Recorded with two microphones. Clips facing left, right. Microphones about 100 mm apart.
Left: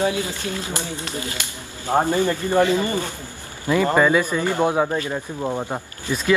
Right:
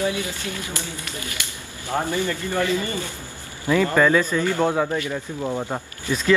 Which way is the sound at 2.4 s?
20° left (ahead or behind).